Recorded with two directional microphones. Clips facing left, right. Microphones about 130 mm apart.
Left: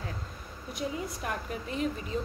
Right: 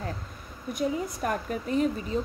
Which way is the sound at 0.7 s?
45° right (ahead or behind).